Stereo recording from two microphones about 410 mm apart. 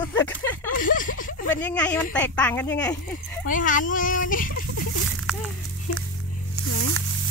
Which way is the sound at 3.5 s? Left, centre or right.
Centre.